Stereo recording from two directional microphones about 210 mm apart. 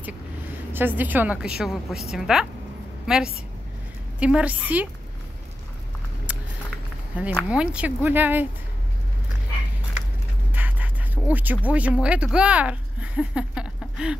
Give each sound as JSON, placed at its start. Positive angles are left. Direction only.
{"t": 0.7, "sound": "a woman's voice", "side_deg": -10}
{"t": 6.3, "sound": "patter", "side_deg": -5}
{"t": 7.3, "sound": "speech", "side_deg": -5}
{"t": 10.5, "sound": "a sound", "side_deg": -10}
{"t": 11.6, "sound": "speech", "side_deg": -5}